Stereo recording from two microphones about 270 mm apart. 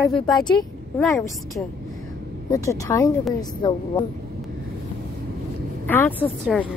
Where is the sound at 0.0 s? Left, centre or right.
Centre.